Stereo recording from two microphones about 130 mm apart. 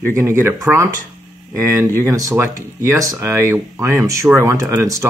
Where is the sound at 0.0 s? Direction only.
20° right (ahead or behind).